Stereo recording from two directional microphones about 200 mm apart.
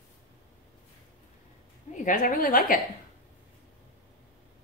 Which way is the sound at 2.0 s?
40° left (ahead or behind).